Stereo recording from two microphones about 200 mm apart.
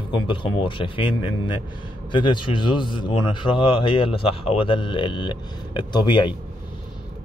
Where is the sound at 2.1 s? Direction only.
25° left (ahead or behind).